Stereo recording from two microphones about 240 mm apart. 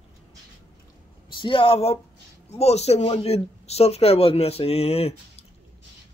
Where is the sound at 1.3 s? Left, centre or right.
Centre.